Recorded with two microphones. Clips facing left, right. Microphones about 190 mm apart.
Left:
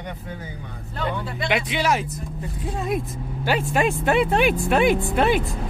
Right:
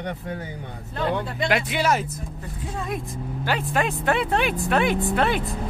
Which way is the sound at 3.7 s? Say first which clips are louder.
Left 3 dB; 15° left (ahead or behind).